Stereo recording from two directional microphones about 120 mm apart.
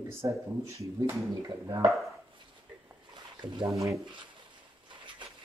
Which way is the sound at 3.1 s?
40° right (ahead or behind).